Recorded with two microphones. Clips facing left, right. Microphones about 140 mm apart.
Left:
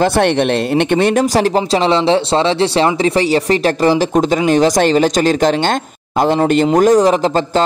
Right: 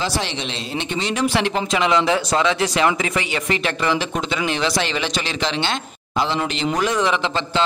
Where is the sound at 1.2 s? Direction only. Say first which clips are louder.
Left 6 dB; 40° left (ahead or behind).